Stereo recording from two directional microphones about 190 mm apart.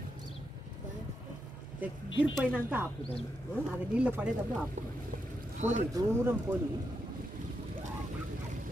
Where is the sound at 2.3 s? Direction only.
Centre (ahead or behind).